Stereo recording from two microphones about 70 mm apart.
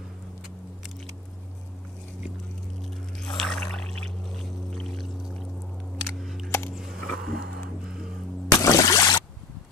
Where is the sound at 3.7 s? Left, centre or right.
Centre.